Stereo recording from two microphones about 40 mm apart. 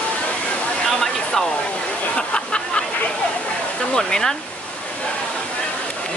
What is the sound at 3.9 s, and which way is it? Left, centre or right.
Speech, centre.